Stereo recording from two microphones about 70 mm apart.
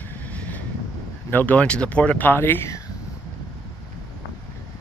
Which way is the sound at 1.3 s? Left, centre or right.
Left.